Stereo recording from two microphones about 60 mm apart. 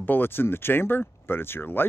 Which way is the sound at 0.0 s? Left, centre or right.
Left.